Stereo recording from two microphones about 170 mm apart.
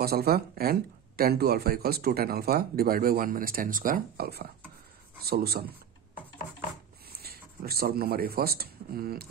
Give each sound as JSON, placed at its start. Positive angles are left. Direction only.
{"t": 0.0, "sound": "speech", "side_deg": -65}
{"t": 7.2, "sound": "speech", "side_deg": -65}